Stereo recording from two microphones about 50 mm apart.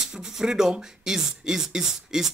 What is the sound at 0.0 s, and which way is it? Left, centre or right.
Speech, centre.